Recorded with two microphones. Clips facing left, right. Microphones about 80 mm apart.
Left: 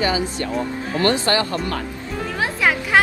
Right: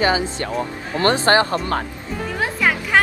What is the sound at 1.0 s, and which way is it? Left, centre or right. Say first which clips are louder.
Speech: right 4 dB; right.